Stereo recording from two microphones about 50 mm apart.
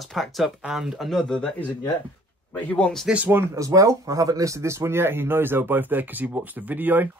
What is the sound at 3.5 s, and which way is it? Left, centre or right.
Speech, right.